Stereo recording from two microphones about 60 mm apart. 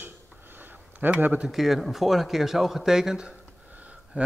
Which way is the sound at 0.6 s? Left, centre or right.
Right.